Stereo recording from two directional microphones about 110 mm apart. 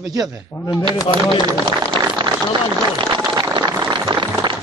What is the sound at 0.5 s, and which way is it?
Speech, 35° left (ahead or behind).